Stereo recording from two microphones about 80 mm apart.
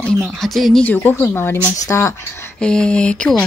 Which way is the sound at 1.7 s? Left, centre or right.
Left.